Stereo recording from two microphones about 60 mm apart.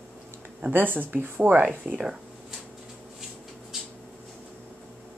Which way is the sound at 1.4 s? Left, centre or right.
Right.